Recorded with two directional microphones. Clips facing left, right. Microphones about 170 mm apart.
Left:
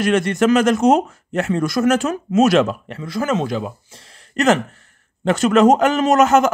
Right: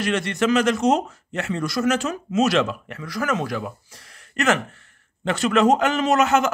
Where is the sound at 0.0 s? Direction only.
45° left (ahead or behind).